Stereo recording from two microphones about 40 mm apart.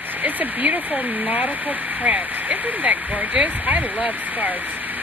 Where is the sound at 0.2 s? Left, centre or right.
Right.